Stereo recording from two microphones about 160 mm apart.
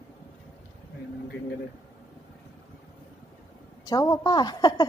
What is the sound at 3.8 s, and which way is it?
A woman's voice, 20° left (ahead or behind).